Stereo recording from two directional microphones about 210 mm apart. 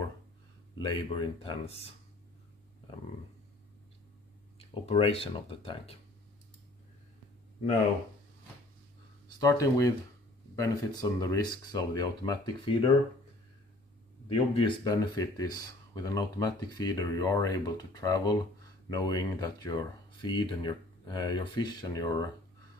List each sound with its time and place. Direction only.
0.7 s speech: 20° left (ahead or behind)
4.6 s speech: 30° left (ahead or behind)
9.4 s speech: 15° left (ahead or behind)
14.3 s speech: 25° left (ahead or behind)